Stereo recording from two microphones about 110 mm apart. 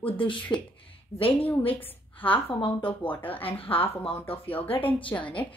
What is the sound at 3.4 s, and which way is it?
Speech, 55° left (ahead or behind).